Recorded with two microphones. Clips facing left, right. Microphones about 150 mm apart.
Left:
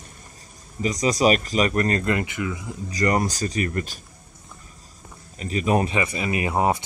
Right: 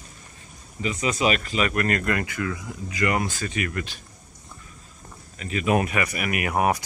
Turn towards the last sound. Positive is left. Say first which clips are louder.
# left 1 dB
turn(degrees=25)  # may be behind; listen again after turning